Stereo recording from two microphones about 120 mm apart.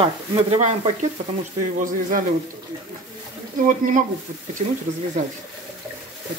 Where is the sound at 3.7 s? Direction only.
90° right.